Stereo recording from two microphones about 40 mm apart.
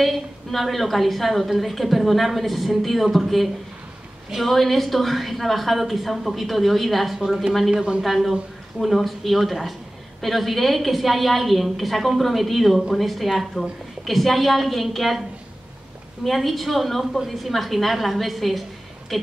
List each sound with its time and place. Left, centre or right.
0.0 s a woman's voice: centre
7.2 s a woman's voice: centre
7.7 s a man's voice: right
8.0 s a woman's voice: centre
16.3 s a woman's voice: centre